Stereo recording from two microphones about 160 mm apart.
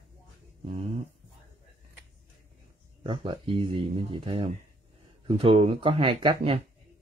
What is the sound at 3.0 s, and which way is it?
Speech, 30° right (ahead or behind).